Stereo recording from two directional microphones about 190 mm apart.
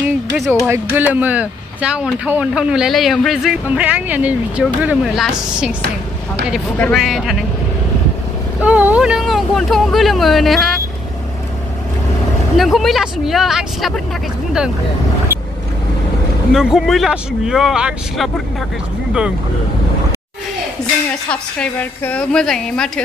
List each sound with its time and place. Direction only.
0.0 s a sound: 10° right (ahead or behind)
0.7 s speech: 10° right (ahead or behind)
6.8 s speech: centre (ahead or behind)
8.6 s speech: 10° right (ahead or behind)
12.5 s speech: centre (ahead or behind)
16.5 s speech: centre (ahead or behind)
21.3 s speech: 5° left (ahead or behind)